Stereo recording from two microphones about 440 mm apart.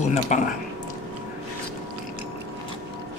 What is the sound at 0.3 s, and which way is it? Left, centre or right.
Speech, centre.